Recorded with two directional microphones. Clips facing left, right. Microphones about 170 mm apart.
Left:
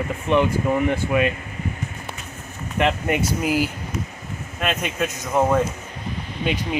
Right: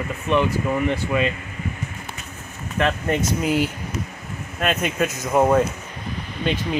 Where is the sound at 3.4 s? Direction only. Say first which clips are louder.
Right 1 dB; 5° left (ahead or behind).